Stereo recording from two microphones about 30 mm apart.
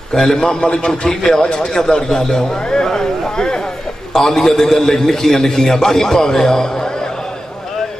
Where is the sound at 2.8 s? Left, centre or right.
Centre.